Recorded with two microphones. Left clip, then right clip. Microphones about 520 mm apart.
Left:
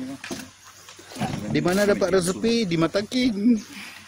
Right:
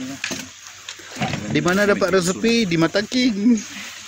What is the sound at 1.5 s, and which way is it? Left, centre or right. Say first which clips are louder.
Speech: right 3 dB; left.